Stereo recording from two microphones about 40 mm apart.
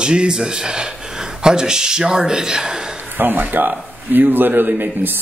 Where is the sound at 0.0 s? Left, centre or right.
Right.